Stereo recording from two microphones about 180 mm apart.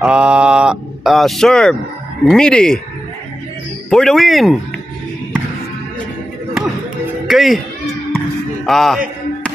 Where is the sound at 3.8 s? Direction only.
Centre (ahead or behind).